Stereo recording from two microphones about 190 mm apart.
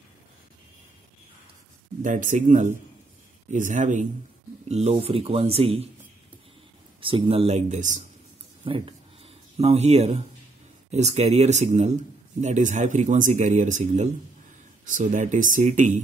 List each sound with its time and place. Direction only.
2.0 s a man's voice: 45° right (ahead or behind)
7.0 s a man's voice: 30° right (ahead or behind)
8.6 s a sound: 25° right (ahead or behind)
10.9 s a man's voice: 35° right (ahead or behind)